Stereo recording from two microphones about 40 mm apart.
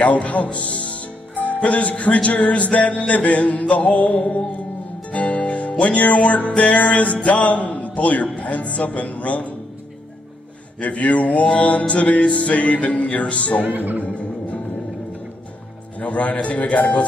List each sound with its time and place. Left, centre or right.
0.0 s a man's voice: left
1.6 s music: left
7.3 s a man's voice: left
8.4 s music: left
10.8 s music: left
13.6 s speech: right
14.0 s music: left
16.0 s music: left